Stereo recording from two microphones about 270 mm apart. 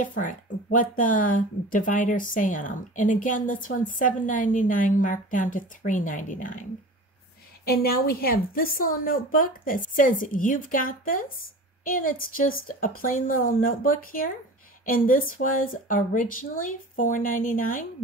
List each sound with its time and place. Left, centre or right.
0.0 s speech: left
7.6 s a woman's voice: left